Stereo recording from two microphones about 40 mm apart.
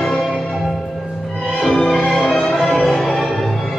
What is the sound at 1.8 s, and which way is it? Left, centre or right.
Music, centre.